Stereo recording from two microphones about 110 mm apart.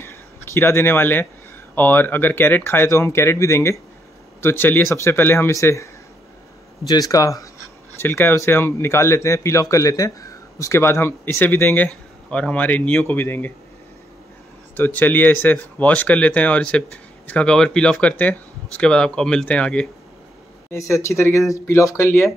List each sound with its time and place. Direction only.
0.0 s a sound: 25° left (ahead or behind)
1.8 s speech: 20° left (ahead or behind)
6.9 s speech: 30° left (ahead or behind)
14.8 s speech: 15° left (ahead or behind)
20.7 s speech: 25° left (ahead or behind)